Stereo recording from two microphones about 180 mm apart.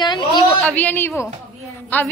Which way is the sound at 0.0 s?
25° left (ahead or behind).